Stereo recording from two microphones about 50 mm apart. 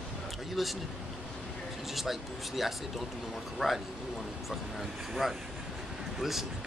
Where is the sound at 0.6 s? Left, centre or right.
Centre.